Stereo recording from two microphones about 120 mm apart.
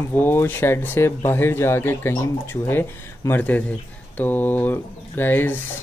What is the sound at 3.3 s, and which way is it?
Speech, 15° left (ahead or behind).